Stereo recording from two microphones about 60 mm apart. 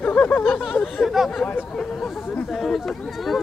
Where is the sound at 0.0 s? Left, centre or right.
Left.